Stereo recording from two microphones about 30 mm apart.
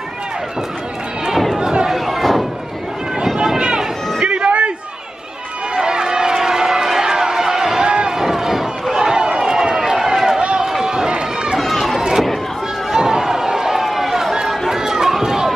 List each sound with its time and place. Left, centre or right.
1.6 s a sound: right
1.9 s a sound: centre
3.5 s run: right
4.5 s a sound: right
5.8 s run: right
6.3 s crowd: centre
7.8 s run: right
8.2 s run: centre
8.9 s run: right
12.9 s a sound: centre
13.7 s chatter: centre
14.7 s run: centre